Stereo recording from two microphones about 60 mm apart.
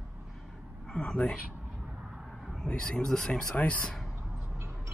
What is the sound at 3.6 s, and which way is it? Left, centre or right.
Speech, centre.